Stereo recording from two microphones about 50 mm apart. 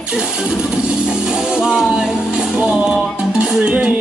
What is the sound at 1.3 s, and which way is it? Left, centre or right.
Music, centre.